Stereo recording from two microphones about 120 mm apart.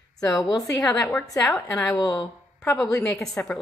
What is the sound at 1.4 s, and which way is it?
Speech, 10° left (ahead or behind).